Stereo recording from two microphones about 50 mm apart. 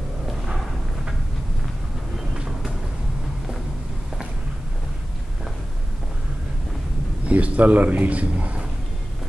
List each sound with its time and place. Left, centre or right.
2.1 s vehicle: centre
7.2 s a man's voice: right